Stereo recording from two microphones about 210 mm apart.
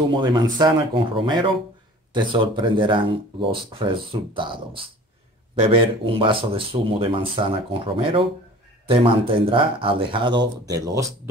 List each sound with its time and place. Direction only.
0.1 s speech: 20° right (ahead or behind)